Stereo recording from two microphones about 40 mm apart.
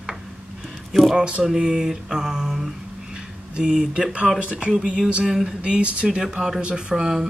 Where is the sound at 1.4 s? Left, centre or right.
Centre.